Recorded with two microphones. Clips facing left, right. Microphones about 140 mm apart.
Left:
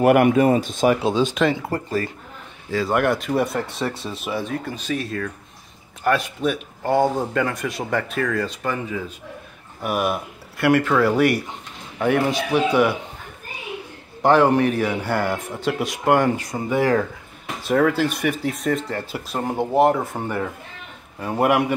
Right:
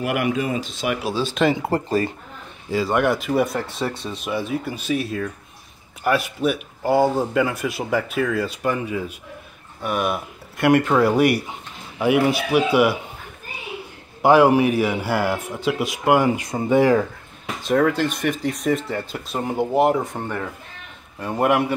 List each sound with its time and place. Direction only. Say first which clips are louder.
0.0 s speech: left 8 dB; 50° left (ahead or behind)
1.0 s speech: left 4 dB; 20° left (ahead or behind)
1.6 s speech: right 3 dB; 25° right (ahead or behind)
2.9 s speech: even; centre (ahead or behind)
9.8 s speech: even; 5° left (ahead or behind)
10.6 s speech: right 1 dB; 20° right (ahead or behind)
14.2 s speech: right 2 dB; 10° right (ahead or behind)
16.3 s speech: right 4 dB; 25° right (ahead or behind)
17.6 s a man's voice: even; 5° left (ahead or behind)